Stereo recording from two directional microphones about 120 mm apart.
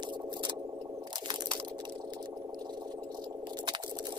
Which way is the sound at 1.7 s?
40° right (ahead or behind).